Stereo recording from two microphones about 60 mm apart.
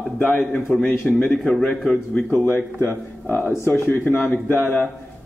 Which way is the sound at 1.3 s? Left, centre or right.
Centre.